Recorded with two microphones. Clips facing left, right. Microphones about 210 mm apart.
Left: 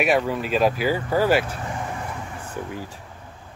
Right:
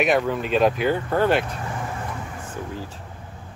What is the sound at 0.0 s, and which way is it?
Speech, 5° left (ahead or behind).